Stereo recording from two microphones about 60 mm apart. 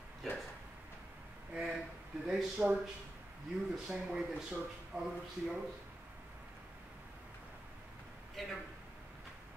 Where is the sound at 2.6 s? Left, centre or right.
Right.